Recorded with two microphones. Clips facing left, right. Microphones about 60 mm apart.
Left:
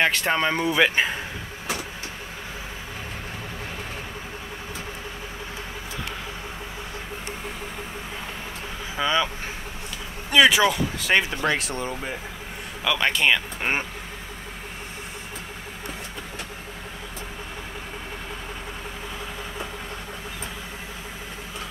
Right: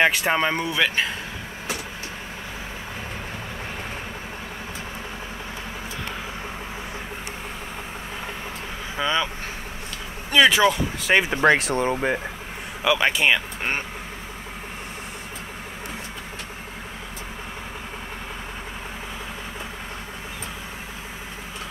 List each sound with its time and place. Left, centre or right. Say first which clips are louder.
0.0 s speech: right 2 dB; centre
0.7 s speech: left 2 dB; centre
8.9 s speech: left 1 dB; centre
10.3 s speech: right 1 dB; centre
11.4 s speech: right 7 dB; right
11.8 s speech: right 8 dB; right
12.8 s speech: right 2 dB; centre